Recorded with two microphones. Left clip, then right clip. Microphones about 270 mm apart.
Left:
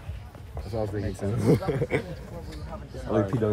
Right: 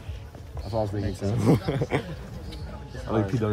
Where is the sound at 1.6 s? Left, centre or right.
Right.